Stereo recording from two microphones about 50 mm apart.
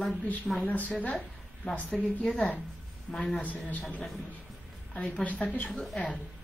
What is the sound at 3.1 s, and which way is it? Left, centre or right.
Speech, centre.